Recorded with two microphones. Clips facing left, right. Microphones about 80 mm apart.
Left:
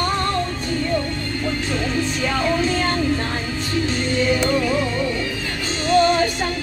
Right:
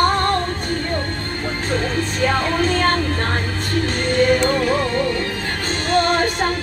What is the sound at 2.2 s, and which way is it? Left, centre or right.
Music, right.